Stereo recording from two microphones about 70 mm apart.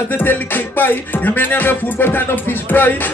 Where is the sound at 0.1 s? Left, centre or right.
Left.